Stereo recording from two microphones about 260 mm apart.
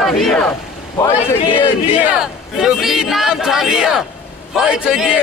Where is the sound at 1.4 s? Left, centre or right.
Centre.